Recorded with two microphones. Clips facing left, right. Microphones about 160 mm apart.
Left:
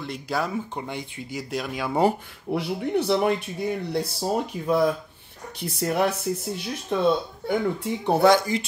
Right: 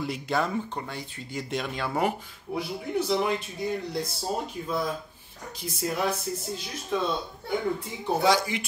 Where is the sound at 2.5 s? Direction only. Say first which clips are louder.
Left 5 dB; 65° left (ahead or behind).